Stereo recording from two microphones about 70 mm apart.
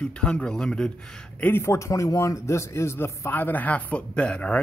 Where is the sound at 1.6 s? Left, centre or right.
Left.